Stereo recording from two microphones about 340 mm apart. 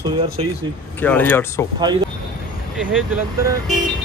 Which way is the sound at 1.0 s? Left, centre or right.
Centre.